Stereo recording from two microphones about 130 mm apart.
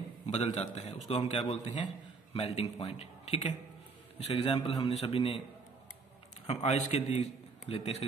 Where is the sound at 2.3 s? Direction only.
50° left (ahead or behind).